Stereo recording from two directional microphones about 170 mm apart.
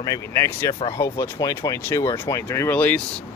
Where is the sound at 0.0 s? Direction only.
20° left (ahead or behind).